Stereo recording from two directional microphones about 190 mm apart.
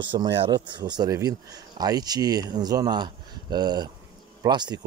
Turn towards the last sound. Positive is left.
turn(degrees=-20)  # may be behind; listen again after turning